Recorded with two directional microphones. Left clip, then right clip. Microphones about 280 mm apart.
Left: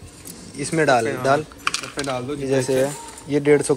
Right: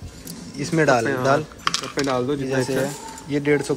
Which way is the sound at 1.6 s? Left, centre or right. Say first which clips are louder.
Right 2 dB; right.